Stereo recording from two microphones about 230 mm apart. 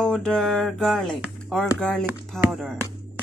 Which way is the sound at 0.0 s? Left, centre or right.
Centre.